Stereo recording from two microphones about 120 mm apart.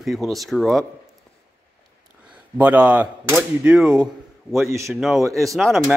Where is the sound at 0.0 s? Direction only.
Centre (ahead or behind).